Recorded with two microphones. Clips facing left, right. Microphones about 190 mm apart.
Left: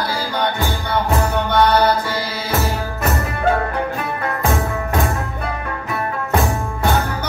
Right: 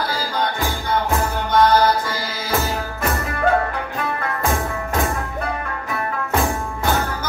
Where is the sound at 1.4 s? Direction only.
65° left (ahead or behind).